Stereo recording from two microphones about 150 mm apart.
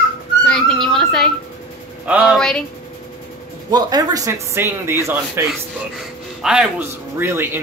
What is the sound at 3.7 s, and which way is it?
Speech, 25° right (ahead or behind).